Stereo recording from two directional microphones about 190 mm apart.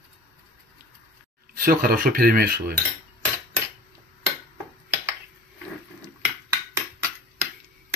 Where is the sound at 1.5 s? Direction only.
50° right (ahead or behind).